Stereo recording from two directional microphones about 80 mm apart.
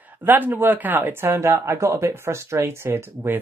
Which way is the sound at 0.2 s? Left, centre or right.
Right.